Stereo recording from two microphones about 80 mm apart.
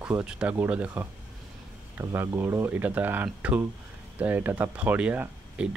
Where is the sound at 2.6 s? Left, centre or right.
Right.